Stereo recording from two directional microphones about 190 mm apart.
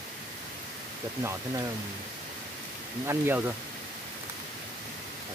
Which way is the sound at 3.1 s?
10° right (ahead or behind).